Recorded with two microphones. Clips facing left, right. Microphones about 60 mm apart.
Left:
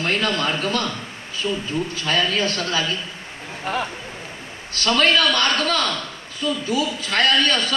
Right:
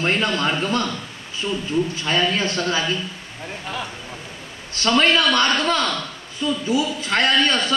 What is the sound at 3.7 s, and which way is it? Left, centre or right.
Speech, left.